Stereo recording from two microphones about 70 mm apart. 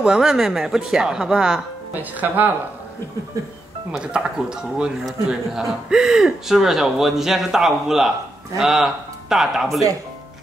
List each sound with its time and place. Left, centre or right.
0.0 s speech: centre
2.0 s speech: right
3.9 s speech: centre